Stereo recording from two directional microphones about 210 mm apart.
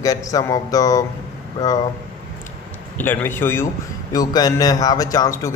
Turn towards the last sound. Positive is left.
turn(degrees=15)  # may be behind; listen again after turning